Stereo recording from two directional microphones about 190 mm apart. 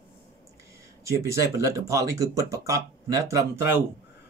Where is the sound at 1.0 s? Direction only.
15° right (ahead or behind).